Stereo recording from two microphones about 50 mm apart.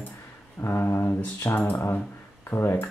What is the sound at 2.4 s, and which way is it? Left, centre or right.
Speech, left.